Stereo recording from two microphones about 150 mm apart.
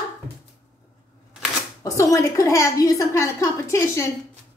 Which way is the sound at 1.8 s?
20° left (ahead or behind).